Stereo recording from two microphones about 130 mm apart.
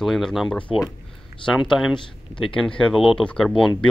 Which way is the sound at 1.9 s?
40° left (ahead or behind).